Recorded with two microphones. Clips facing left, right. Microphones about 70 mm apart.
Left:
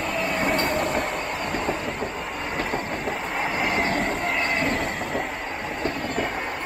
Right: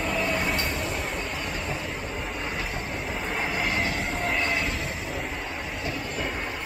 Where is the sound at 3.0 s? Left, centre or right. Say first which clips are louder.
Left 3 dB; centre.